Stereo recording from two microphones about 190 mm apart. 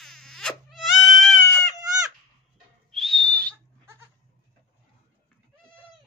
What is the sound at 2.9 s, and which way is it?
Whistle, 5° left (ahead or behind).